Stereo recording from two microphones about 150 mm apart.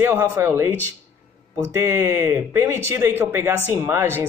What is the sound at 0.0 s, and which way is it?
Speech, 15° right (ahead or behind).